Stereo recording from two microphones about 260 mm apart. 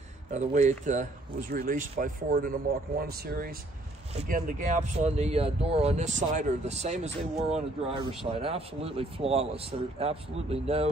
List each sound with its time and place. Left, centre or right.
0.3 s speech: right